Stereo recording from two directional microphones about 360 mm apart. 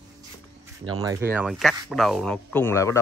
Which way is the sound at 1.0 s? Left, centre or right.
Centre.